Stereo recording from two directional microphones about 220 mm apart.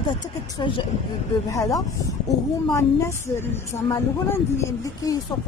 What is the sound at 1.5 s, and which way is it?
Speech, 15° left (ahead or behind).